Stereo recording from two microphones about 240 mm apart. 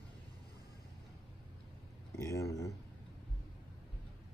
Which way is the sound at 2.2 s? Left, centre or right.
Centre.